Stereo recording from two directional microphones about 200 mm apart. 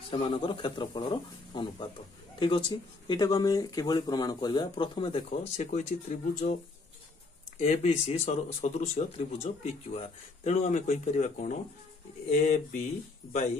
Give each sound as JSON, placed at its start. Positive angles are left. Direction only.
{"t": 0.1, "sound": "speech", "side_deg": 25}
{"t": 7.6, "sound": "speech", "side_deg": 35}